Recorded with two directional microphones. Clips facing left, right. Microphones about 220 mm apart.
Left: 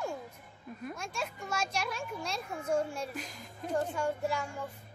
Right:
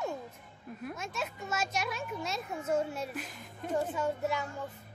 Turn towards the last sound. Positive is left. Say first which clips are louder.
# even
turn(degrees=0)  # may be behind; listen again after turning